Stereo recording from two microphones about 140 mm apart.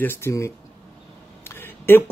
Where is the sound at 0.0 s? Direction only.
15° left (ahead or behind).